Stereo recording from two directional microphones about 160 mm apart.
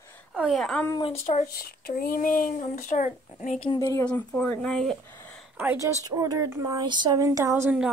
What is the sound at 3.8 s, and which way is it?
Speech, 20° left (ahead or behind).